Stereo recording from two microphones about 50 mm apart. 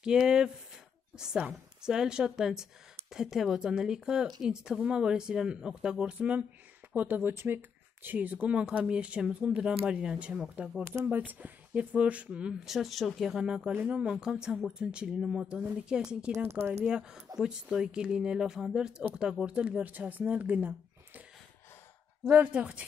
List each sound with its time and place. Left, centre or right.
0.0 s speech: centre
7.0 s speech: right
7.4 s a sound: right
8.2 s speech: right
11.1 s speech: right
12.6 s speech: centre
13.4 s speech: centre
19.9 s a woman's voice: right
22.5 s speech: right